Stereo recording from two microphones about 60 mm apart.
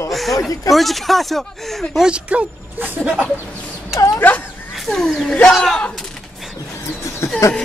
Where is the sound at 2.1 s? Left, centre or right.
Centre.